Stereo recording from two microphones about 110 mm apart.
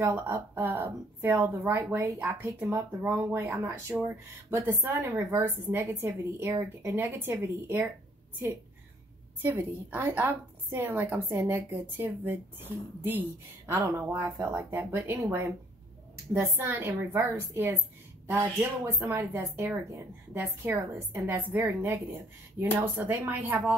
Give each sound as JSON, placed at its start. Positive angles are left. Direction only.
{"t": 0.0, "sound": "a woman's voice", "side_deg": -20}
{"t": 9.4, "sound": "a woman's voice", "side_deg": -20}
{"t": 14.2, "sound": "a woman's voice", "side_deg": -25}